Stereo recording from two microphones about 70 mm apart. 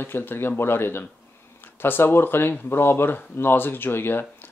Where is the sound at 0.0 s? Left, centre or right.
Left.